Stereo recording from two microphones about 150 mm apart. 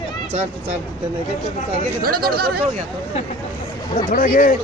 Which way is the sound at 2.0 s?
85° right.